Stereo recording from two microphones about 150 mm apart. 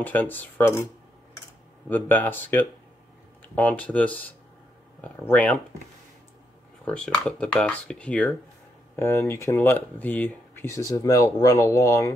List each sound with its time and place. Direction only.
0.0 s speech: 10° left (ahead or behind)
1.9 s speech: 10° left (ahead or behind)
6.8 s speech: 5° left (ahead or behind); by 12.1 s 20° left (ahead or behind)